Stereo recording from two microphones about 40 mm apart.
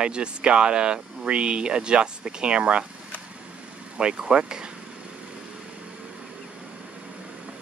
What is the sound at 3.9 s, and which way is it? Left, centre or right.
Speech, right.